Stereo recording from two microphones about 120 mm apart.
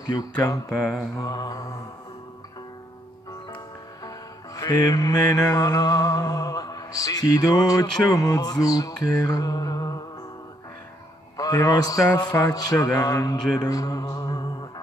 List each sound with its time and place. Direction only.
0.0 s music: 35° left (ahead or behind)
4.6 s music: 35° left (ahead or behind)
11.3 s music: 30° left (ahead or behind)